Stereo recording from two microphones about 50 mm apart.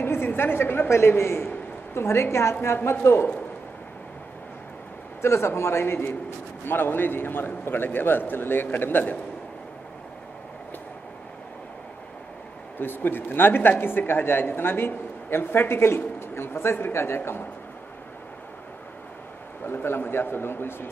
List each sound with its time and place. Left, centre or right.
0.0 s a woman's voice: left
5.2 s speech: left
12.7 s speech: left
19.6 s speech: left